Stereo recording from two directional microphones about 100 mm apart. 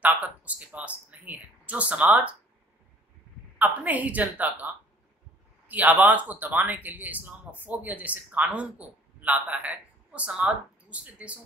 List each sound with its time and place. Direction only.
0.0 s speech: 15° right (ahead or behind)
3.5 s speech: 15° right (ahead or behind)
5.7 s speech: 15° right (ahead or behind)